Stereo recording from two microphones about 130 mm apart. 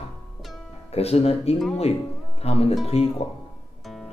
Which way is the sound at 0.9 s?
50° left (ahead or behind).